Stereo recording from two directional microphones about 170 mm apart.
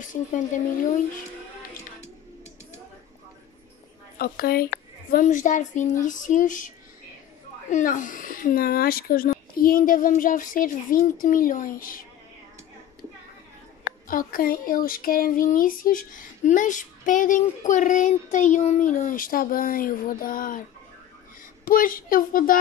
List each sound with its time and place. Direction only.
0.0 s child singing: 45° left (ahead or behind)
4.2 s child singing: 60° left (ahead or behind)
7.7 s child singing: 50° left (ahead or behind)
14.0 s child singing: 55° left (ahead or behind)
21.6 s a woman's voice: 55° left (ahead or behind)